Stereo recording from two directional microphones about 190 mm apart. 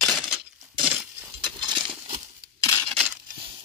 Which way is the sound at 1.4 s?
20° right (ahead or behind).